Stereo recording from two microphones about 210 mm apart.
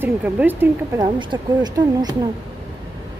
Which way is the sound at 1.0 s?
20° right (ahead or behind).